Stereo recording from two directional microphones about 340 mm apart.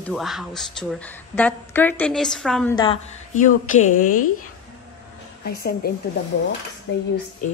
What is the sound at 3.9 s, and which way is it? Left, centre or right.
Speech, left.